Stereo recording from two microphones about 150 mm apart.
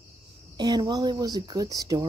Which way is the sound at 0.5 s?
30° right (ahead or behind).